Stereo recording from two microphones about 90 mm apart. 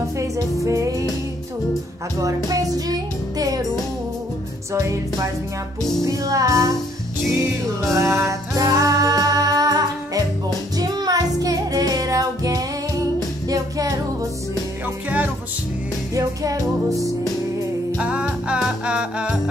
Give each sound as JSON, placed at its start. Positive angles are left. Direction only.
{"t": 0.7, "sound": "music", "side_deg": -35}
{"t": 2.1, "sound": "music", "side_deg": -40}
{"t": 4.7, "sound": "music", "side_deg": -35}
{"t": 7.9, "sound": "music", "side_deg": -30}
{"t": 15.0, "sound": "music", "side_deg": -20}
{"t": 16.2, "sound": "music", "side_deg": -40}
{"t": 17.9, "sound": "music", "side_deg": -15}